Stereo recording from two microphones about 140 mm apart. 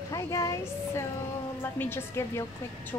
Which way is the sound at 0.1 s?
25° left (ahead or behind).